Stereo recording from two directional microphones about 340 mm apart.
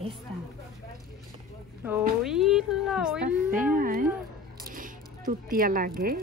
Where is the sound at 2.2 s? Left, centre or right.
Centre.